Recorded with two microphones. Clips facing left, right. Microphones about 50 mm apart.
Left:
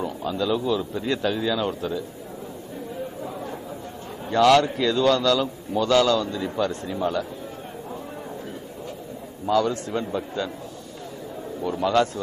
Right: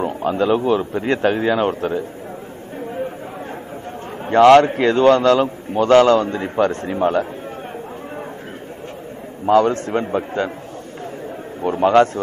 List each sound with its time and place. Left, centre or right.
0.0 s a man's voice: right
4.3 s a man's voice: right
9.5 s a man's voice: right
11.6 s a man's voice: right